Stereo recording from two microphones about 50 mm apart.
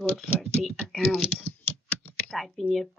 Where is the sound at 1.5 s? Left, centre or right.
Left.